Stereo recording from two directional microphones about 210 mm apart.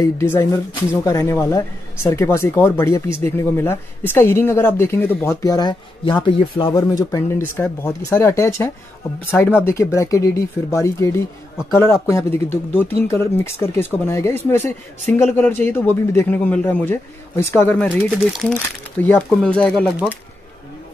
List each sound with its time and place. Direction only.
0.2 s speech: 15° left (ahead or behind)